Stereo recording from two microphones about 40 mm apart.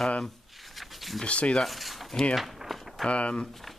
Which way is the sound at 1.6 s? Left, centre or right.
Centre.